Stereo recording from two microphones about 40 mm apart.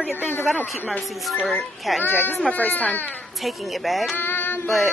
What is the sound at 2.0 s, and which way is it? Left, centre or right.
Speech, left.